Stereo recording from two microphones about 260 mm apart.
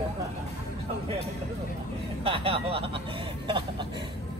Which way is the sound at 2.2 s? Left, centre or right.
Right.